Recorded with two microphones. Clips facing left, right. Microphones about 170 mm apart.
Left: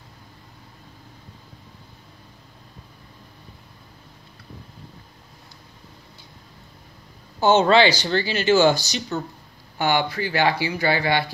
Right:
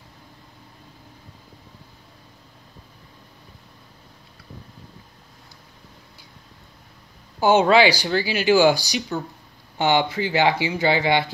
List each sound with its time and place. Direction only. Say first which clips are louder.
7.3 s speech: even; 10° right (ahead or behind)